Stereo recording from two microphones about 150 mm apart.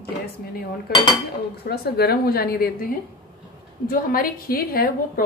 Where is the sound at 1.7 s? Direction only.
90° left.